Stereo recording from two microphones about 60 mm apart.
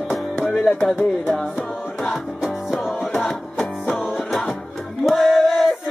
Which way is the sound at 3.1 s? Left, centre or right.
Centre.